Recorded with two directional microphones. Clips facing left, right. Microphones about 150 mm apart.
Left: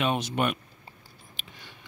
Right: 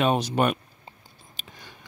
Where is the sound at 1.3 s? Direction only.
40° right (ahead or behind).